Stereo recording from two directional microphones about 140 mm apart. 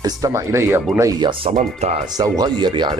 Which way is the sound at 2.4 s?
30° right (ahead or behind).